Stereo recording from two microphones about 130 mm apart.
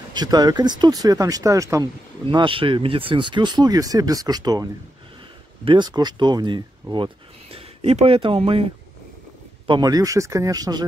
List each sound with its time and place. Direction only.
0.1 s speech: 30° right (ahead or behind)
2.2 s speech: 40° right (ahead or behind)
5.7 s speech: 35° right (ahead or behind)
9.7 s speech: 30° right (ahead or behind)